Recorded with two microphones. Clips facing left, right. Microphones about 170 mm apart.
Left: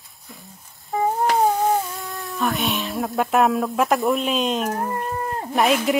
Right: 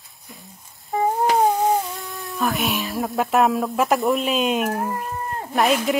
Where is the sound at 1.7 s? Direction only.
Centre (ahead or behind).